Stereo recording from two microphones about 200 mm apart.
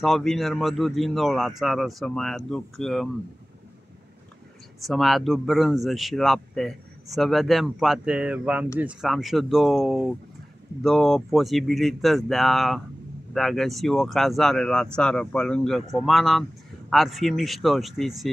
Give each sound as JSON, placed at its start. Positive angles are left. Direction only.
{"t": 0.0, "sound": "a man's voice", "side_deg": 0}
{"t": 4.8, "sound": "a man's voice", "side_deg": 0}